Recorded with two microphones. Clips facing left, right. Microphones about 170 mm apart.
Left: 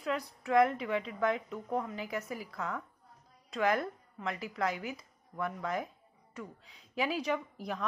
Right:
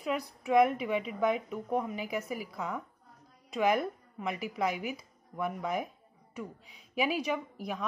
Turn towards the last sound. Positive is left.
turn(degrees=-10)  # may be behind; listen again after turning